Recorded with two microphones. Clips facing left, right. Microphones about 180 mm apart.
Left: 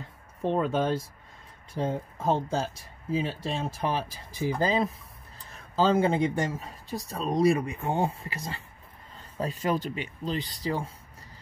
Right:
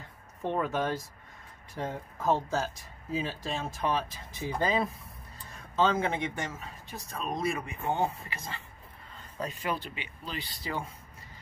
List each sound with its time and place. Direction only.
0.4 s speech: 30° left (ahead or behind)